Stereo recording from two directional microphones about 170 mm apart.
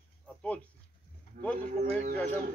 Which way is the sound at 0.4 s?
5° left (ahead or behind).